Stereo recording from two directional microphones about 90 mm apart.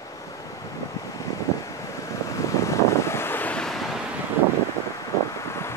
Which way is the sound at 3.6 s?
5° left (ahead or behind).